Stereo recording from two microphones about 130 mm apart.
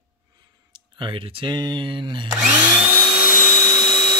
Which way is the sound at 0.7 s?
40° right (ahead or behind).